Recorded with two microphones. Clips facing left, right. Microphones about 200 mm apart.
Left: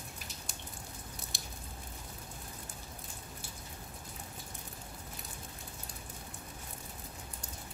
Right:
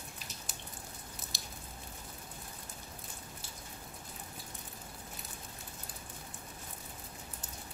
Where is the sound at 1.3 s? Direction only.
55° left (ahead or behind).